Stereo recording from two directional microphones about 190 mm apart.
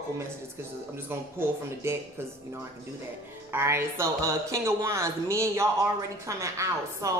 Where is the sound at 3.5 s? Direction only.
15° right (ahead or behind).